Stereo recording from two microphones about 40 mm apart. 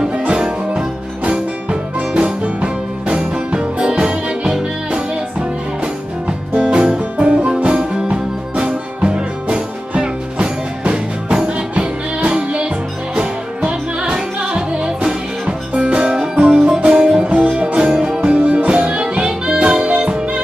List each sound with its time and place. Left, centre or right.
0.1 s music: right
6.2 s music: right
18.2 s music: right